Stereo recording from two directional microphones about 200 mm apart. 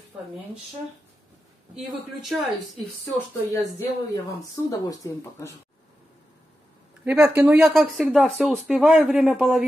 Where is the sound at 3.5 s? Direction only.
15° left (ahead or behind).